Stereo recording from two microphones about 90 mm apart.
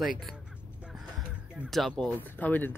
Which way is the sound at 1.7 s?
Centre (ahead or behind).